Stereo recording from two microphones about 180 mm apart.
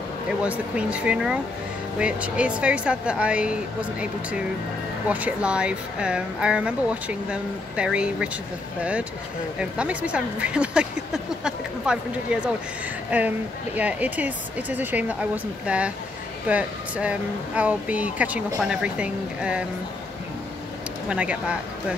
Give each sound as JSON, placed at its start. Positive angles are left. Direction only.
{"t": 0.4, "sound": "speech", "side_deg": -5}
{"t": 9.6, "sound": "speech", "side_deg": -5}
{"t": 13.7, "sound": "speech", "side_deg": -10}
{"t": 21.1, "sound": "speech", "side_deg": -5}